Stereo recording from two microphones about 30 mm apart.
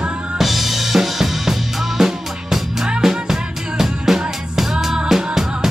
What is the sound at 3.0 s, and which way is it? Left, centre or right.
Music, centre.